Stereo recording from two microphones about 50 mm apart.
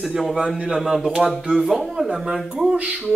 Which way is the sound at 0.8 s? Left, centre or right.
Centre.